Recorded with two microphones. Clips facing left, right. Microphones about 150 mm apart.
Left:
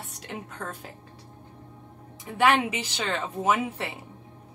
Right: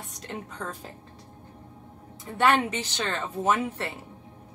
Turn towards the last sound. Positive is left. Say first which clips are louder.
# even
turn(degrees=10)  # may be behind; listen again after turning